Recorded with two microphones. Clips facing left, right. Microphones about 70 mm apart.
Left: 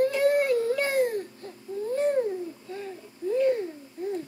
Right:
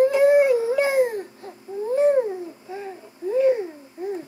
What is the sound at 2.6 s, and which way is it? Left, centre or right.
Babbling, centre.